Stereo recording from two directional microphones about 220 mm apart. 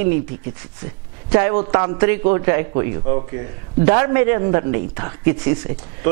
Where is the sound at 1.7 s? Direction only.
20° right (ahead or behind).